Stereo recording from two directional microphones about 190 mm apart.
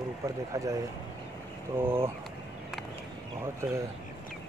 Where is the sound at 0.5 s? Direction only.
15° right (ahead or behind).